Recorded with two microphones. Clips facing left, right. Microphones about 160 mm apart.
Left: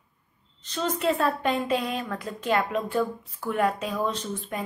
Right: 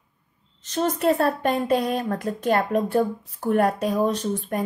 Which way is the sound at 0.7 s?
40° right (ahead or behind).